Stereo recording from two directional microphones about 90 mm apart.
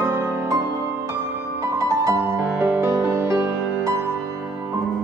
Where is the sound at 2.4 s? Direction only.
20° right (ahead or behind).